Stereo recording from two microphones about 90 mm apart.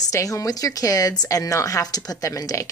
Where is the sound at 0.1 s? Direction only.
35° left (ahead or behind).